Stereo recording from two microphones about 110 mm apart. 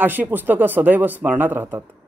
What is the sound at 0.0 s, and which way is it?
A man's voice, 15° right (ahead or behind).